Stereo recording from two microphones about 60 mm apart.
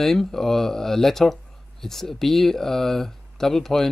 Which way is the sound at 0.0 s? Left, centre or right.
Centre.